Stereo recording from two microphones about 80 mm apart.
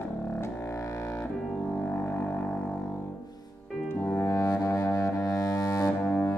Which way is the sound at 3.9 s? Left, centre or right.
Left.